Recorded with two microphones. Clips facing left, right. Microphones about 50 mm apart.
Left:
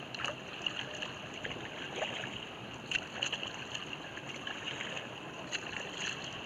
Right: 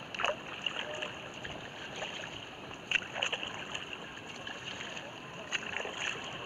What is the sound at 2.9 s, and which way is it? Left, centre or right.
Rowboat, right.